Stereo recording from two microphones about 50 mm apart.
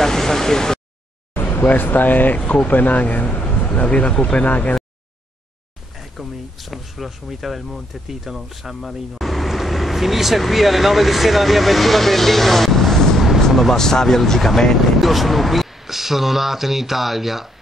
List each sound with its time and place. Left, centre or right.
0.0 s a sound: centre
1.3 s speech: left
5.9 s speech: centre